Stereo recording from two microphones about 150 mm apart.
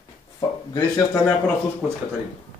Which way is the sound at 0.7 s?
15° left (ahead or behind).